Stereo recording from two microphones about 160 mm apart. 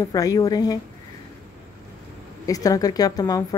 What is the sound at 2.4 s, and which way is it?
A woman's voice, 20° left (ahead or behind).